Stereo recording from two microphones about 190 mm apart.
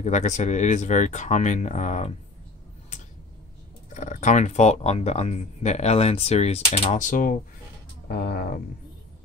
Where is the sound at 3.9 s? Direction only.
40° left (ahead or behind).